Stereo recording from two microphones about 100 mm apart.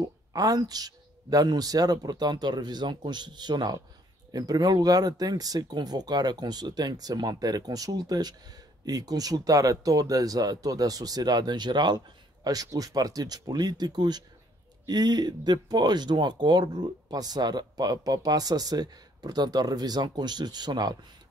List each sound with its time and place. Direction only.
0.0 s speech: 40° right (ahead or behind)